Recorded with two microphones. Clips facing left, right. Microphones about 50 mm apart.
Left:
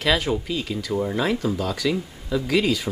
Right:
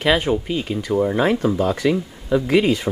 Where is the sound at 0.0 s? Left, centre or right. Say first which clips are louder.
Right 4 dB; right.